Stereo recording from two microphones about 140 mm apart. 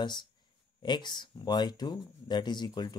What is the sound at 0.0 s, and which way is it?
Speech, 30° left (ahead or behind).